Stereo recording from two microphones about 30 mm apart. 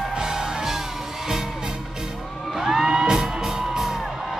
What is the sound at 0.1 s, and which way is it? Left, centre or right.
Music, right.